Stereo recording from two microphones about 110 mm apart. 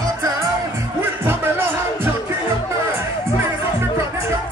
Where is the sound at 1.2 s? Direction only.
20° right (ahead or behind).